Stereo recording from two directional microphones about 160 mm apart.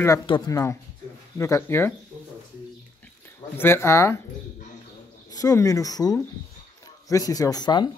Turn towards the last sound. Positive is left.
turn(degrees=25)  # may be behind; listen again after turning